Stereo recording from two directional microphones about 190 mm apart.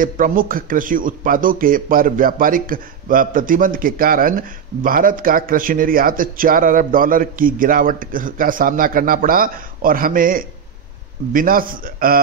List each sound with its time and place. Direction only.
0.0 s speech: 45° right (ahead or behind)